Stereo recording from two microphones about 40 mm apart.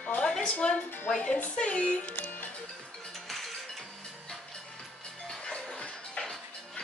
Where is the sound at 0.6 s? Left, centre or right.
Left.